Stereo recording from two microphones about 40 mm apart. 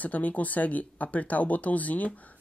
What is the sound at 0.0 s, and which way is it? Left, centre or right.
Speech, left.